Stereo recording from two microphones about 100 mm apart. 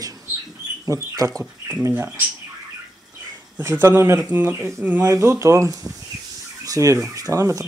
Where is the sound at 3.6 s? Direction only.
20° right (ahead or behind).